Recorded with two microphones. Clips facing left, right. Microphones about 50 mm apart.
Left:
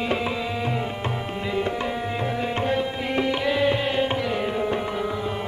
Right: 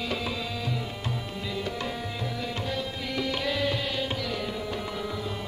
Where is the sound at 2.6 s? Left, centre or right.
Left.